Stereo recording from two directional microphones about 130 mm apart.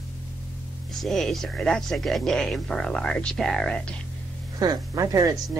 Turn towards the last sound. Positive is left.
turn(degrees=-25)  # may be behind; listen again after turning